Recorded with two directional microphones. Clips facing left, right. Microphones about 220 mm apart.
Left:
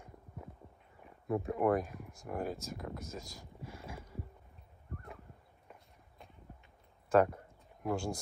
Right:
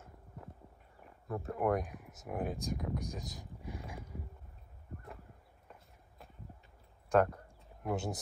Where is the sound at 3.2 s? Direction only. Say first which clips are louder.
Right 4 dB; 20° right (ahead or behind).